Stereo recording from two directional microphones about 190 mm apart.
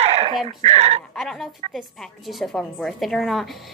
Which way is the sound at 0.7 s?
35° right (ahead or behind).